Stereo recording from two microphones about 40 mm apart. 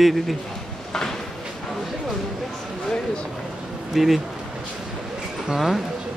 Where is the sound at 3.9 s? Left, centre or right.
Centre.